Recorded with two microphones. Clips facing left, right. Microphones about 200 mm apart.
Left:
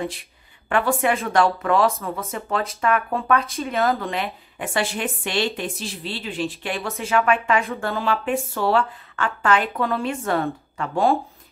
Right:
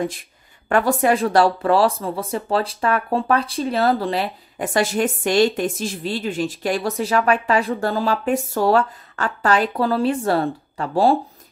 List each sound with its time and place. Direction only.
0.7 s speech: 40° right (ahead or behind)